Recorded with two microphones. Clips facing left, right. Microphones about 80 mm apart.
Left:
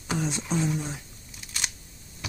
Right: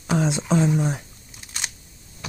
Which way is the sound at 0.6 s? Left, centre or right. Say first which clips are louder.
Right 7 dB; right.